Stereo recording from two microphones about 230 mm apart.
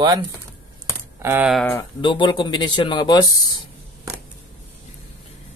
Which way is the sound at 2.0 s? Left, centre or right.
Left.